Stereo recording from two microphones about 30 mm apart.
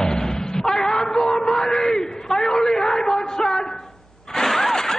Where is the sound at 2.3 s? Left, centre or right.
Centre.